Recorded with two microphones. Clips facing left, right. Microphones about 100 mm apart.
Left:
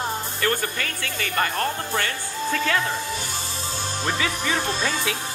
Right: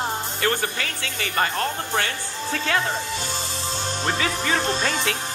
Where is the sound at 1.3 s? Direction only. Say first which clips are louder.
Right 1 dB; 35° right (ahead or behind).